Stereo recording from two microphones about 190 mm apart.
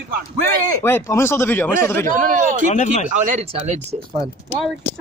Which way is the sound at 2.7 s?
40° left (ahead or behind).